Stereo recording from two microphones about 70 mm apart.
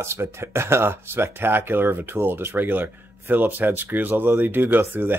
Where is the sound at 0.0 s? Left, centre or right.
Right.